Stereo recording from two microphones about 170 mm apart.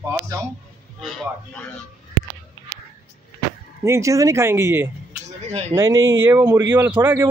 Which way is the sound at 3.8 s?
15° right (ahead or behind).